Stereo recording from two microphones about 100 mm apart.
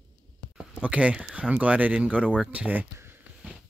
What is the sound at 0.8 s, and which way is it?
Speech, 10° right (ahead or behind).